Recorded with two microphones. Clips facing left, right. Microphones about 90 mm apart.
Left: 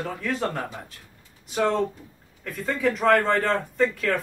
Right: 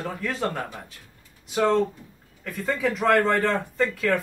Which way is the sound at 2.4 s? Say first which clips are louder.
Even; centre (ahead or behind).